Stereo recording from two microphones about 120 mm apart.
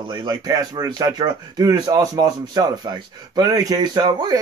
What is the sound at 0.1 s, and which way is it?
Speech, 35° right (ahead or behind).